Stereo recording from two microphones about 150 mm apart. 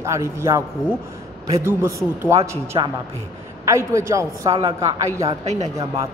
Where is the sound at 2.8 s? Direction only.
30° right (ahead or behind).